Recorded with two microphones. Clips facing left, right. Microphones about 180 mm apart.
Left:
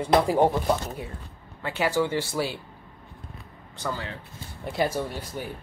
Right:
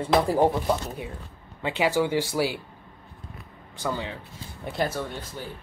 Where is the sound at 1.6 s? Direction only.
15° right (ahead or behind).